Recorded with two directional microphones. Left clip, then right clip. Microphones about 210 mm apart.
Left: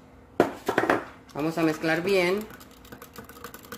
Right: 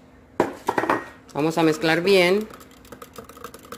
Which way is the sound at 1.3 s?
40° right (ahead or behind).